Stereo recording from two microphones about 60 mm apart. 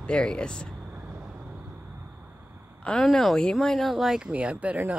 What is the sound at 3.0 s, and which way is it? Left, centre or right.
Speech, centre.